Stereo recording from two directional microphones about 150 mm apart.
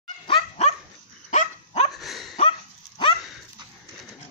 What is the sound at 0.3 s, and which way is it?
Dog, 45° left (ahead or behind).